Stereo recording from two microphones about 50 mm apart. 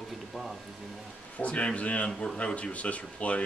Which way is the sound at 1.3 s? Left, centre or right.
Left.